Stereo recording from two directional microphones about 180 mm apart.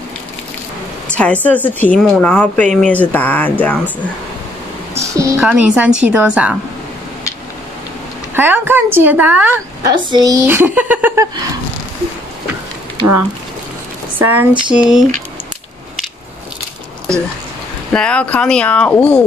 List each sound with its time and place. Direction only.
1.0 s speech: 5° left (ahead or behind)
4.9 s speech: 15° right (ahead or behind)
8.4 s speech: 10° right (ahead or behind)
9.8 s speech: 25° right (ahead or behind)
14.1 s speech: 10° right (ahead or behind)
17.9 s speech: 5° left (ahead or behind)